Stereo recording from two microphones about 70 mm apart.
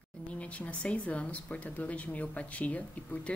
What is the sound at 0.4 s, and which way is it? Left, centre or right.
Speech, centre.